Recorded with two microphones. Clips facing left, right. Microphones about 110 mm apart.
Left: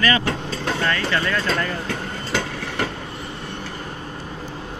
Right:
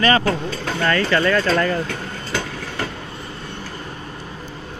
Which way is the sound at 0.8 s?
70° right (ahead or behind).